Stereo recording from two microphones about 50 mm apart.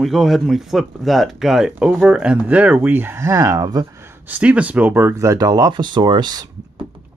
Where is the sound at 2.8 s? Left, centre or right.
Right.